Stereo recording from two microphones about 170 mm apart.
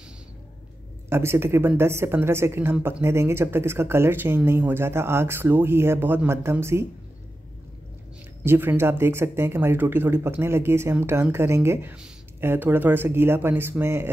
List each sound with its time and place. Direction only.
1.1 s speech: 15° right (ahead or behind)
8.5 s speech: 15° right (ahead or behind)